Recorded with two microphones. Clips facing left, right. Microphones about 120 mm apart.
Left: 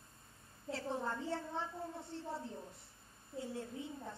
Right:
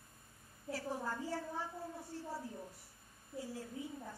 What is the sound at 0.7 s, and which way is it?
A child's voice, 25° left (ahead or behind).